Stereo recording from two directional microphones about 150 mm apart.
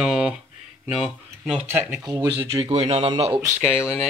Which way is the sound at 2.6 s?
45° right (ahead or behind).